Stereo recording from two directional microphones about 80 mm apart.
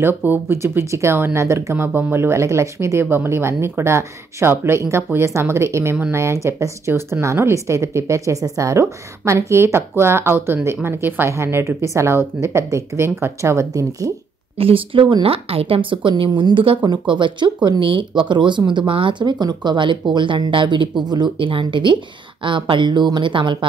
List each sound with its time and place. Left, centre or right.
0.0 s speech: right
1.9 s speech: right
15.0 s speech: right
19.4 s speech: right